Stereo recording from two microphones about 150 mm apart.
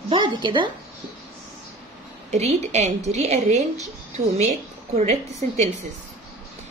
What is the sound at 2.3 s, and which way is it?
A woman's voice, 45° right (ahead or behind).